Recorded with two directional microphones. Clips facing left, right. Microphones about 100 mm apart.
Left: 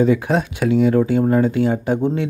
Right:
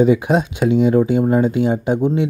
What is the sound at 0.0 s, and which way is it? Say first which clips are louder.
Speech: right 2 dB; 15° right (ahead or behind).